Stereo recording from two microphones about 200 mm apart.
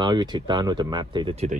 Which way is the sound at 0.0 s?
20° right (ahead or behind).